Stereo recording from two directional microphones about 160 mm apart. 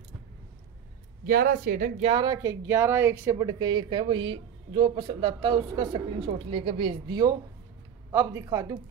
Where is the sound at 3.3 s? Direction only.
30° right (ahead or behind).